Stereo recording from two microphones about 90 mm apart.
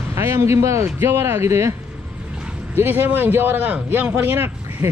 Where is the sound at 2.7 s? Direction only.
20° right (ahead or behind).